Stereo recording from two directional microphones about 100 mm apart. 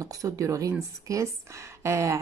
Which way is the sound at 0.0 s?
35° right (ahead or behind).